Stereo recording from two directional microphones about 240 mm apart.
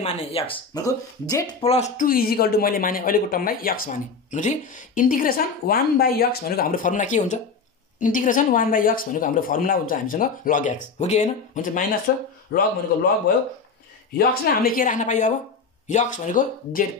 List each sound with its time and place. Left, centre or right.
0.0 s speech: left
14.1 s speech: left